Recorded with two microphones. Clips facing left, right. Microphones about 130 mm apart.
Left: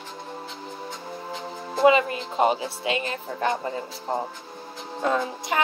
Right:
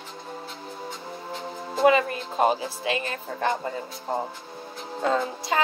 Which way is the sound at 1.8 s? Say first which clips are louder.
Left 1 dB; 20° left (ahead or behind).